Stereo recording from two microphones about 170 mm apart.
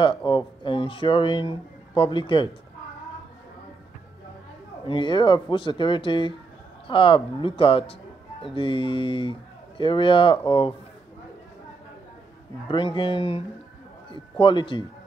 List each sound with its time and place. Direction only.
0.0 s speech: 30° left (ahead or behind)
4.8 s a man's voice: 30° left (ahead or behind)
12.6 s speech: 30° left (ahead or behind)
14.4 s a man's voice: 30° left (ahead or behind)